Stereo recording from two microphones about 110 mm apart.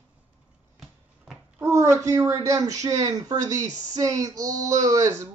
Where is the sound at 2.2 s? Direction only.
30° right (ahead or behind).